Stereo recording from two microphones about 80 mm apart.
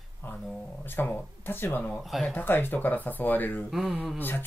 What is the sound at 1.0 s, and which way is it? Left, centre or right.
Speech, left.